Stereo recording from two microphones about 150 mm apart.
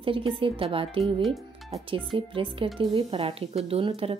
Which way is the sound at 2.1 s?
35° right (ahead or behind).